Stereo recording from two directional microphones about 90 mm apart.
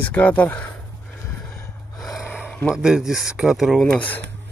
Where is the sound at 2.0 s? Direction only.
5° right (ahead or behind).